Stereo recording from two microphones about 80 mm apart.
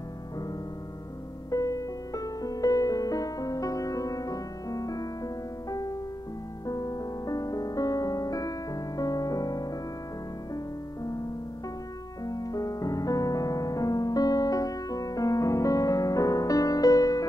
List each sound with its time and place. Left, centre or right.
1.5 s music: left
12.3 s music: left